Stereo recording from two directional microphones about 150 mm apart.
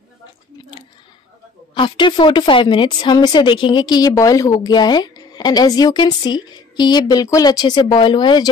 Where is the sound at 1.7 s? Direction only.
30° left (ahead or behind).